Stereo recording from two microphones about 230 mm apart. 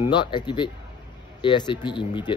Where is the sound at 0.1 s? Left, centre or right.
Centre.